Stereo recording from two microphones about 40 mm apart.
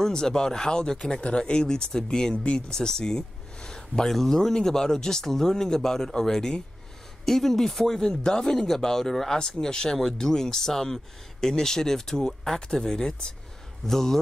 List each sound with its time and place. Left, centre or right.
0.0 s speech: centre
2.3 s speech: left
2.7 s speech: centre